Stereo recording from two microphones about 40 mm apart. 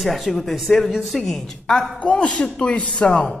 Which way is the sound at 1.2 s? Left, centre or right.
Centre.